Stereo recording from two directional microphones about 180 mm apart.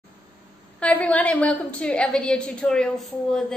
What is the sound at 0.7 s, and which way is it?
A woman's voice, 5° left (ahead or behind).